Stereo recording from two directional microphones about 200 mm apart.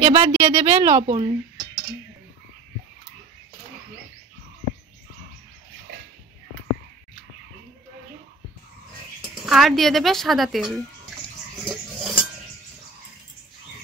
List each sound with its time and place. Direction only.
0.0 s a woman's voice: 25° right (ahead or behind)
9.5 s a woman's voice: centre (ahead or behind)
11.6 s cutlery: centre (ahead or behind)